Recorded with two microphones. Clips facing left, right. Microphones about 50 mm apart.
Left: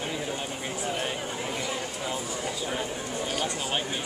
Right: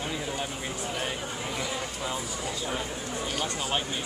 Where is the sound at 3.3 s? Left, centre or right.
Centre.